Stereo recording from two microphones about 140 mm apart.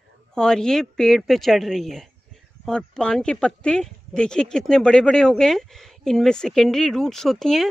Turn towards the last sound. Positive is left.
turn(degrees=0)  # may be behind; listen again after turning